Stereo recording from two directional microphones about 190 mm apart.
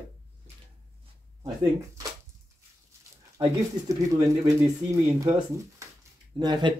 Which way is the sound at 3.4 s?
20° right (ahead or behind).